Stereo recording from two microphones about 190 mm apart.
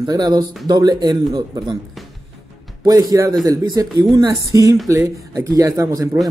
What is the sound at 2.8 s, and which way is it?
Speech, 20° right (ahead or behind).